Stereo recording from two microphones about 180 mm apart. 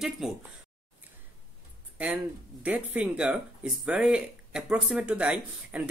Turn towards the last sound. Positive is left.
turn(degrees=-5)  # may be behind; listen again after turning